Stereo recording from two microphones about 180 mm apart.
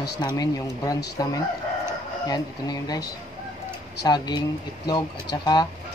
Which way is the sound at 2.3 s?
20° left (ahead or behind).